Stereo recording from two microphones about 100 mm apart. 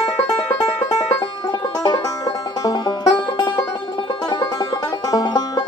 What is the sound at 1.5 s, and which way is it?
Music, 45° left (ahead or behind).